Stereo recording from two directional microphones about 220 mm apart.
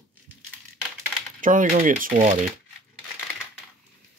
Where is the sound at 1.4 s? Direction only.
35° right (ahead or behind).